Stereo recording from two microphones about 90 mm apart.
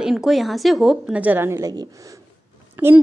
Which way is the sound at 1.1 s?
20° right (ahead or behind).